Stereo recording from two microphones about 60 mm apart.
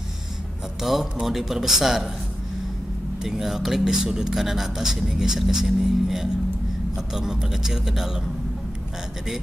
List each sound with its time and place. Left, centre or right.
0.8 s speech: centre
3.3 s speech: centre